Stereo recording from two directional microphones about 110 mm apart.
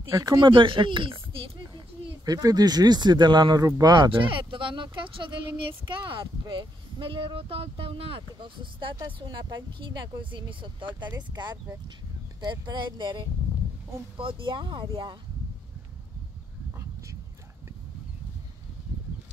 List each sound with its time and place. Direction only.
0.1 s speech: 30° right (ahead or behind)
0.4 s speech: 45° right (ahead or behind)
2.2 s speech: 35° right (ahead or behind)
4.1 s speech: 50° right (ahead or behind)